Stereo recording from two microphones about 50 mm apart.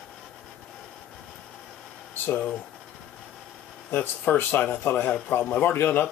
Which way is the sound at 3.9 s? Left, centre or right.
Left.